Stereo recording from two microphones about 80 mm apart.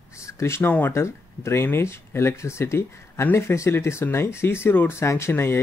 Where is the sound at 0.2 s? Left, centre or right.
Left.